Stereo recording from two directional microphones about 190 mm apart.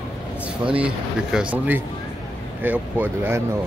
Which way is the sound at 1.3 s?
10° right (ahead or behind).